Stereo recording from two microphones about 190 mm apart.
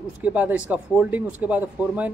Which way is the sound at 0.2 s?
10° right (ahead or behind).